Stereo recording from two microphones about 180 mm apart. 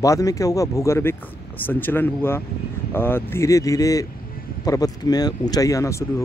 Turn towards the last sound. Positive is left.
turn(degrees=15)  # may be behind; listen again after turning